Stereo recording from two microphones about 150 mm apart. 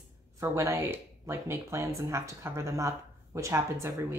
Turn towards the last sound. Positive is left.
turn(degrees=-20)  # may be behind; listen again after turning